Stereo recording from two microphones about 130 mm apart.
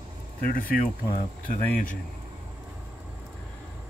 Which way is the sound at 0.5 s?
90° left.